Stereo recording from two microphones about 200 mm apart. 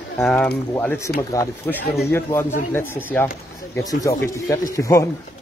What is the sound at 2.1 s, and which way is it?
Speech, 10° left (ahead or behind).